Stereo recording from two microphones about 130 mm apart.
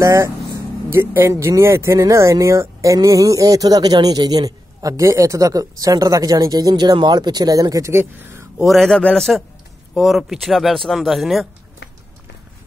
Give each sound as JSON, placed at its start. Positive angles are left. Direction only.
{"t": 0.0, "sound": "speech", "side_deg": -25}
{"t": 8.6, "sound": "speech", "side_deg": 5}